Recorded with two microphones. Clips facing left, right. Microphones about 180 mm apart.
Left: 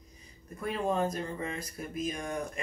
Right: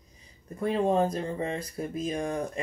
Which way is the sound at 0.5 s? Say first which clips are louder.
Right 6 dB; 30° right (ahead or behind).